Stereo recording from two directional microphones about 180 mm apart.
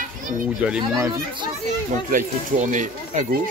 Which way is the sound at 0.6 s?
10° right (ahead or behind).